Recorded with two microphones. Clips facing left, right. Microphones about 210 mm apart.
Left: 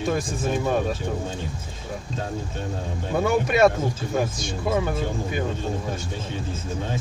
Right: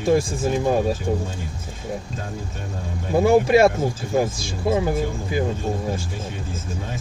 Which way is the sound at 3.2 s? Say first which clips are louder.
Right 4 dB; 30° right (ahead or behind).